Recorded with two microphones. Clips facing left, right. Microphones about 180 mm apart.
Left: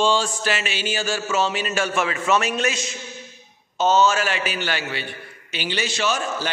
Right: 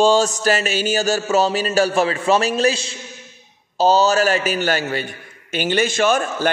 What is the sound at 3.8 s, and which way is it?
A man's voice, 35° right (ahead or behind).